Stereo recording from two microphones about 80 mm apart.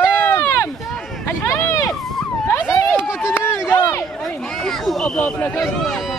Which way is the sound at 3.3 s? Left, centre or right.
Left.